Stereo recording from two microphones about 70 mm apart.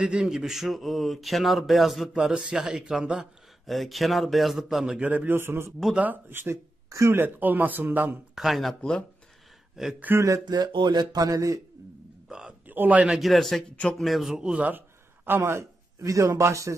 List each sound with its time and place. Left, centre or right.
0.0 s speech: centre
3.6 s speech: centre
5.0 s a man's voice: right
6.9 s speech: right
7.2 s speech: right
8.4 s speech: centre
9.8 s speech: centre
10.4 s a sound: right
12.3 s a sound: centre
12.6 s a man's voice: right
13.2 s speech: centre
14.3 s speech: centre
15.2 s a man's voice: right
16.0 s speech: right